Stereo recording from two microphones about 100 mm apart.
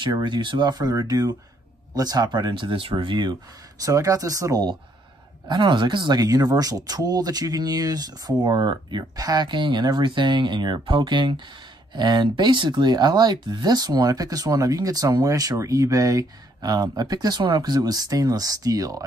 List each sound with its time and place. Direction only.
0.0 s speech: 50° right (ahead or behind)
3.8 s speech: 35° right (ahead or behind)
5.5 s speech: 50° right (ahead or behind)